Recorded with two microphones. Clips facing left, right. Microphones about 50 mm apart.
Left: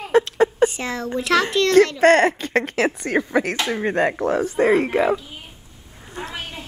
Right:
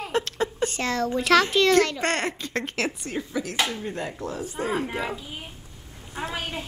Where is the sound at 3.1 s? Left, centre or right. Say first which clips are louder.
Left 9 dB; left.